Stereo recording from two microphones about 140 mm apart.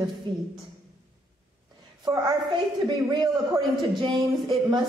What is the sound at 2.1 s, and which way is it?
A man's voice, 30° right (ahead or behind).